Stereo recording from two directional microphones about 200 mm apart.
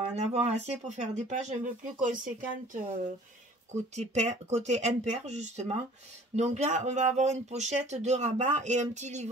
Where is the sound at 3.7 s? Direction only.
35° right (ahead or behind).